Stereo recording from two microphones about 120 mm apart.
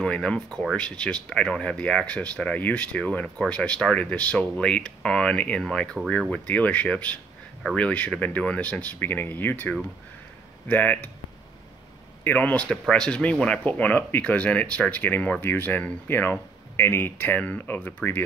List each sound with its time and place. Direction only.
0.0 s speech: 5° left (ahead or behind)
12.3 s speech: 15° left (ahead or behind)